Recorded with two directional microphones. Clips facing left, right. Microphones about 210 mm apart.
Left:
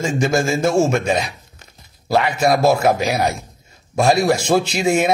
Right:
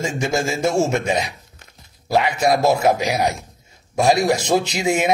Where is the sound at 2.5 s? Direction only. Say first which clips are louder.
Left 2 dB; 20° right (ahead or behind).